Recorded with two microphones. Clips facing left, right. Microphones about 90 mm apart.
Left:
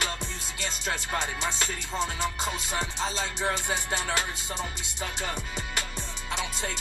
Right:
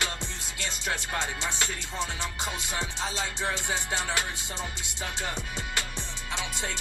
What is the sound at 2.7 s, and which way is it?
Music, 15° right (ahead or behind).